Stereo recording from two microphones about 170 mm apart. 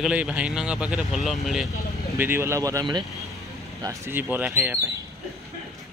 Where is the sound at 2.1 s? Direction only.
15° right (ahead or behind).